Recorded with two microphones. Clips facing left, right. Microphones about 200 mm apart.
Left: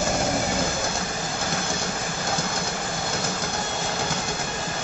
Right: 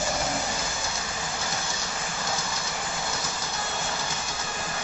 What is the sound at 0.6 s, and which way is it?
Vehicle, 55° left (ahead or behind).